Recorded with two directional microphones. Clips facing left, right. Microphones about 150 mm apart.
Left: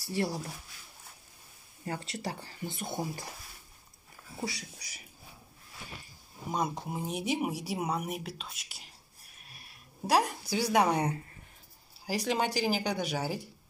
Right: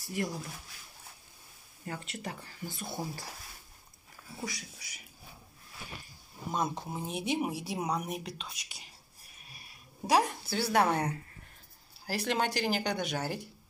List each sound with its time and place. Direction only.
0.1 s speech: 35° left (ahead or behind)
1.9 s speech: 35° left (ahead or behind)
4.5 s speech: 35° left (ahead or behind)
6.5 s speech: 10° left (ahead or behind)
9.5 s a sound: centre (ahead or behind)
10.4 s speech: 10° left (ahead or behind)